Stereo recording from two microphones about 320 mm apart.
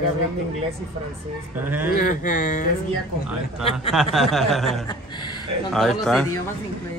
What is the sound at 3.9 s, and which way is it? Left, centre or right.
A man's voice, centre.